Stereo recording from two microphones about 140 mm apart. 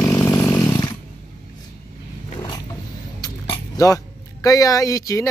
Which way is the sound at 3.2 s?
25° left (ahead or behind).